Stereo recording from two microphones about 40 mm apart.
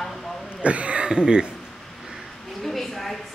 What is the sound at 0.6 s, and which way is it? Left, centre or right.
Speech, right.